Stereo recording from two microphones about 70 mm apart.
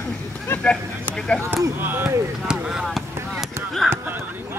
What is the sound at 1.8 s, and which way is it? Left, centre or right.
Speech, right.